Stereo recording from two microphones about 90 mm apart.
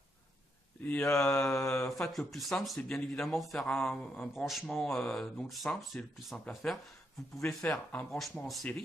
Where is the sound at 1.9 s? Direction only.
Centre (ahead or behind).